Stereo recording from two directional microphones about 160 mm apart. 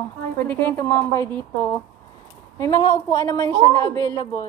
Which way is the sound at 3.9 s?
20° left (ahead or behind).